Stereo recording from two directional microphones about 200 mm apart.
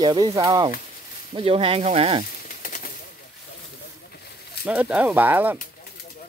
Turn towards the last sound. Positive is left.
turn(degrees=-10)  # may be behind; listen again after turning